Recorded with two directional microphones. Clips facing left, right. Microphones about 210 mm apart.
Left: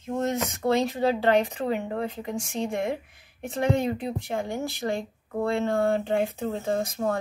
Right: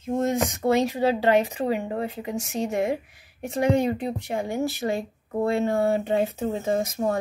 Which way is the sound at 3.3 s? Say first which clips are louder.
Right 3 dB; 15° right (ahead or behind).